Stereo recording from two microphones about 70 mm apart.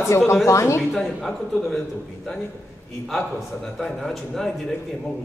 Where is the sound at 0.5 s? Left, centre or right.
Left.